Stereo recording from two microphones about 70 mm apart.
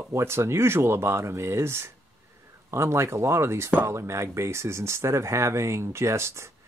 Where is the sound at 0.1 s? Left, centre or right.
Right.